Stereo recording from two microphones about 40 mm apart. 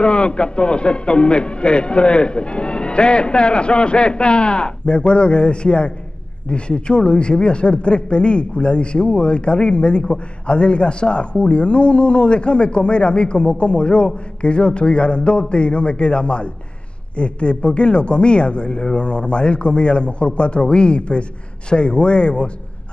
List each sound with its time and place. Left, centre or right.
0.0 s speech: left